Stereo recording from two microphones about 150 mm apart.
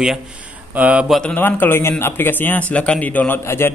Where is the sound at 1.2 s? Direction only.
10° left (ahead or behind).